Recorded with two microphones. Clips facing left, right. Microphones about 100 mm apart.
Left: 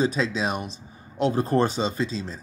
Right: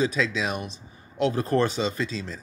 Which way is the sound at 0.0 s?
35° left (ahead or behind).